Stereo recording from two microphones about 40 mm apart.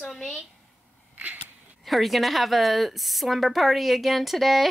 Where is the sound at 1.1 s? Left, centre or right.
Right.